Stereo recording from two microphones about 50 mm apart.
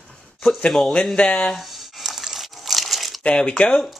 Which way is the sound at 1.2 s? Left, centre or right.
Left.